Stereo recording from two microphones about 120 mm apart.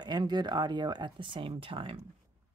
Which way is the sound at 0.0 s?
35° right (ahead or behind).